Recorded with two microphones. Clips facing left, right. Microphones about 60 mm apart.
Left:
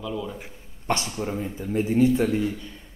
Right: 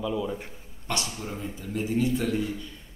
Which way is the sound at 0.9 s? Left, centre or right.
Left.